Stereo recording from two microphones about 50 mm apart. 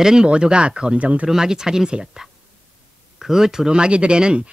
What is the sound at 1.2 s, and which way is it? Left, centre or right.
Speech, centre.